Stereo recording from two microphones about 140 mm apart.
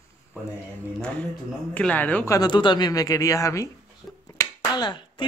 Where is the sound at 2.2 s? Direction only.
25° left (ahead or behind).